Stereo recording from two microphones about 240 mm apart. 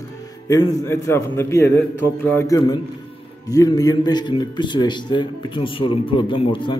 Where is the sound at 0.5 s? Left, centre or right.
Centre.